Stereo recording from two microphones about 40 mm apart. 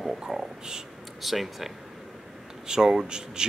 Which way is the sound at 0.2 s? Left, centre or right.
Centre.